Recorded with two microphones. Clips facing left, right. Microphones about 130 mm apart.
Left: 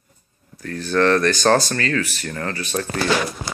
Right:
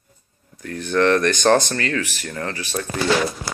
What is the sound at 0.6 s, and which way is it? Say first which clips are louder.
Speech: even; 20° right (ahead or behind).